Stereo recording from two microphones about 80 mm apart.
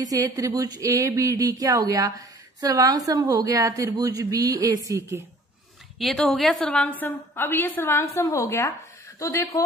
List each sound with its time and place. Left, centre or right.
0.0 s speech: right
5.9 s a woman's voice: centre
6.6 s a woman's voice: centre; by 9.6 s left